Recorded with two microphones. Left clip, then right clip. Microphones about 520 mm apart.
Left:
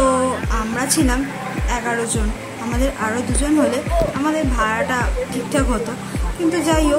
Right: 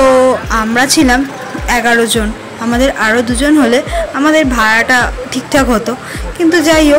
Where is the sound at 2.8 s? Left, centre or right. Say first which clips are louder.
Right 11 dB; left.